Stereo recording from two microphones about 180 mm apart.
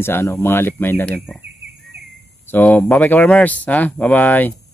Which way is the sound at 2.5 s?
10° left (ahead or behind).